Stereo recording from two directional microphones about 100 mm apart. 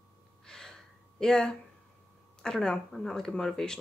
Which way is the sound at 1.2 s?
5° left (ahead or behind).